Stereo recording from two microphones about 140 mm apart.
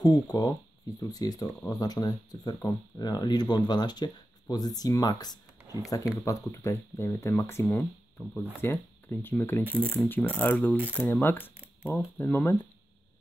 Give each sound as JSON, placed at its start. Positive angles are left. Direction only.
{"t": 0.0, "sound": "speech", "side_deg": 25}
{"t": 7.6, "sound": "speech", "side_deg": 5}
{"t": 9.7, "sound": "speech", "side_deg": -15}
{"t": 10.0, "sound": "speech", "side_deg": 10}